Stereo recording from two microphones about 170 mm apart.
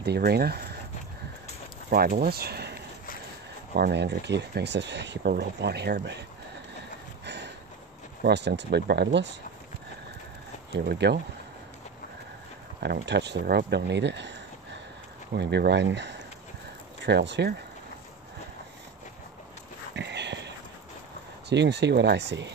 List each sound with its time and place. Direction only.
0.0 s speech: 70° right (ahead or behind)
1.9 s speech: 60° right (ahead or behind); by 6.2 s 80° right
7.2 s a sound: 90° right
8.2 s speech: 85° right
10.7 s speech: 85° right
12.8 s speech: 85° right
20.0 s a sound: 90° right
21.5 s speech: 90° right